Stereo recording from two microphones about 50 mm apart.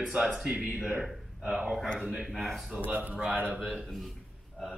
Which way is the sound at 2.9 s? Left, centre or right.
Right.